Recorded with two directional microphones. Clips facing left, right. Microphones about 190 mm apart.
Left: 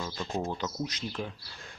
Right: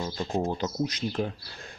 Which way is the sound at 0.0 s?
25° right (ahead or behind).